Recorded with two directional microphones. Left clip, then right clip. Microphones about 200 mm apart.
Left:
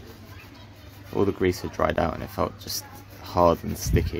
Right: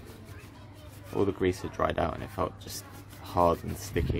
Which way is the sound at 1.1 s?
20° left (ahead or behind).